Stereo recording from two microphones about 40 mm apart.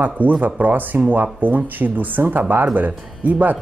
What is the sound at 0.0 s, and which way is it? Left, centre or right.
Speech, right.